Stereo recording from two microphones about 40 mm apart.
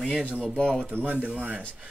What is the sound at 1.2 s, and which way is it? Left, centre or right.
Speech, right.